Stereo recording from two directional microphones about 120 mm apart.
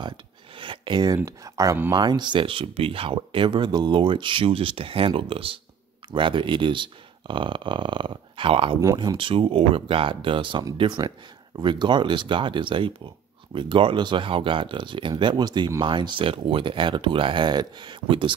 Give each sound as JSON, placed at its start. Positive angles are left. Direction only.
{"t": 0.6, "sound": "speech", "side_deg": -40}